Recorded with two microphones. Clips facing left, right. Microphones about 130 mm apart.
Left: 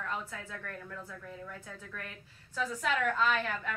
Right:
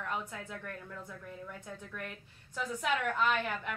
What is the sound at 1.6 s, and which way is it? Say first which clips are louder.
A woman's voice: right 2 dB; 15° right (ahead or behind).